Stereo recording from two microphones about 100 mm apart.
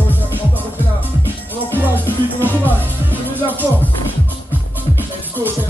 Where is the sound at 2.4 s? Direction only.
20° right (ahead or behind).